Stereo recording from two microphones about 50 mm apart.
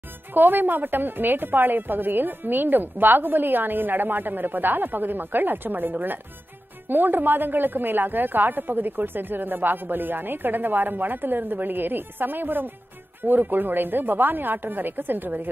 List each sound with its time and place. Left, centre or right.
0.3 s a woman's voice: right